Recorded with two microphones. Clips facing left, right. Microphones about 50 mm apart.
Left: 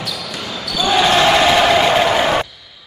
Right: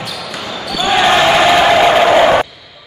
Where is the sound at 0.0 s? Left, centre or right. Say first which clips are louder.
Right 2 dB; centre.